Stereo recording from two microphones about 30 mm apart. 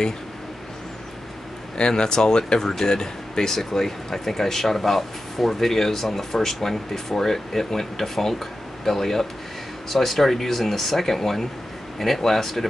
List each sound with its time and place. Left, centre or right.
1.8 s speech: left; by 12.6 s centre